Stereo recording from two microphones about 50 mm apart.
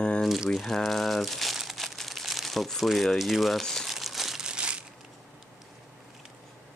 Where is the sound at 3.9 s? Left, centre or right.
Centre; by 4.8 s right.